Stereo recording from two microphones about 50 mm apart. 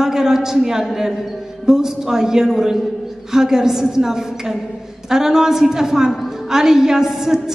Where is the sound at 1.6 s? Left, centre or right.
Centre.